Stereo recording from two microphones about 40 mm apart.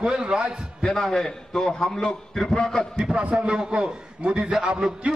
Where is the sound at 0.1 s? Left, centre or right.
Right.